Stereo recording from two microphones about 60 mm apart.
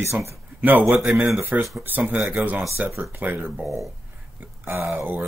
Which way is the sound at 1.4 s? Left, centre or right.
Right.